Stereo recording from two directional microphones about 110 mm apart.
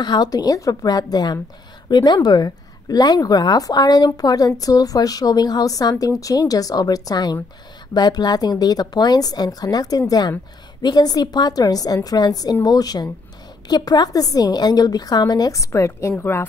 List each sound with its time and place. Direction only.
0.0 s speech: 40° left (ahead or behind); by 16.4 s 20° left (ahead or behind)